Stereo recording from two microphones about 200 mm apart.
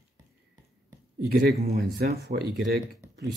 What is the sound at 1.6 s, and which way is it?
Speech, 55° right (ahead or behind).